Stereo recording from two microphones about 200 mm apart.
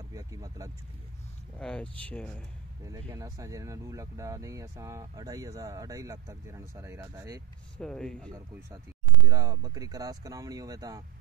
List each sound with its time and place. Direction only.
0.1 s speech: 15° right (ahead or behind)
1.6 s speech: 5° left (ahead or behind)
2.9 s speech: 15° right (ahead or behind)
7.7 s speech: 5° left (ahead or behind)
9.3 s speech: 20° right (ahead or behind)